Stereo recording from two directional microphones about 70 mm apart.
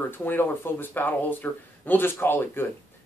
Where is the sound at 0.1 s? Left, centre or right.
Left.